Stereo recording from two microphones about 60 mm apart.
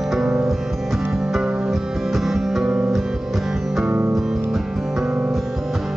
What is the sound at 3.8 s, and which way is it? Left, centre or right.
Music, right.